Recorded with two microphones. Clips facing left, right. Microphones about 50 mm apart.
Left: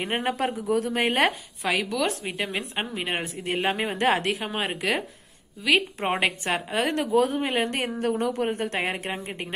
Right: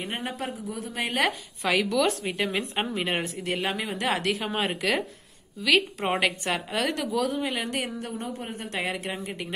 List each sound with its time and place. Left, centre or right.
0.0 s a woman's voice: left
1.6 s speech: centre
3.4 s a woman's voice: left
4.3 s speech: centre
5.6 s a woman's voice: left